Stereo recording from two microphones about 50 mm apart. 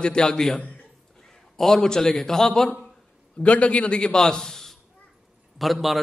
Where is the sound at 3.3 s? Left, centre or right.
Left; by 6.0 s centre.